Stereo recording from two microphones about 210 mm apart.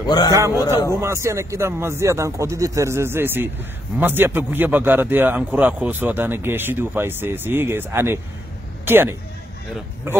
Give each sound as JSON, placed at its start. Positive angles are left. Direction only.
{"t": 0.0, "sound": "a man's voice", "side_deg": 20}
{"t": 0.3, "sound": "a man's voice", "side_deg": -15}